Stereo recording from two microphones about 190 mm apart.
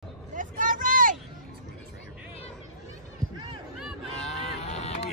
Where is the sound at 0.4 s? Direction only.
45° right (ahead or behind).